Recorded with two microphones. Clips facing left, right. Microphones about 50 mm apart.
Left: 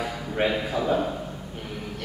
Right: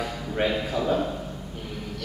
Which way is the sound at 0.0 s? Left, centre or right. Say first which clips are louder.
Left 1 dB; centre.